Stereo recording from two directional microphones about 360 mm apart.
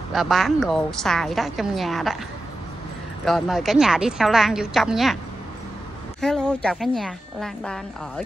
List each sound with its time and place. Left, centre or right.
0.1 s a woman's voice: centre
3.3 s a woman's voice: centre
6.2 s a woman's voice: centre